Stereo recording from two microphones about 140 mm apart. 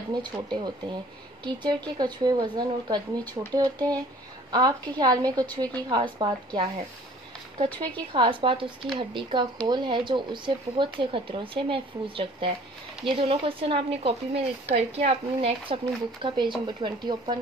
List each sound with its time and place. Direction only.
0.1 s a woman's voice: 35° right (ahead or behind)
8.1 s speech: 35° right (ahead or behind)